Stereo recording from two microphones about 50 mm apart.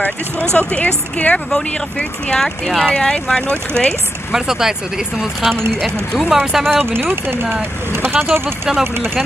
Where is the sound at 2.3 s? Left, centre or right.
Centre.